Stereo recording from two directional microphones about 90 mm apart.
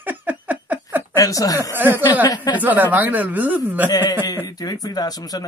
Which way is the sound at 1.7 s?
25° right (ahead or behind).